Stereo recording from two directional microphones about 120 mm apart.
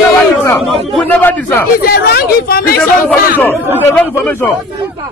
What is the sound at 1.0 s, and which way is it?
Speech, 15° left (ahead or behind).